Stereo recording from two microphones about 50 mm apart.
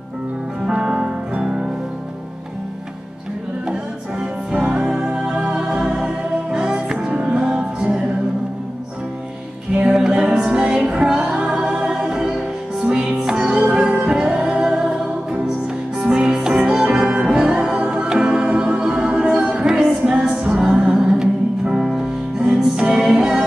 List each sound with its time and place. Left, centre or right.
0.7 s music: centre
3.6 s music: centre
9.8 s music: centre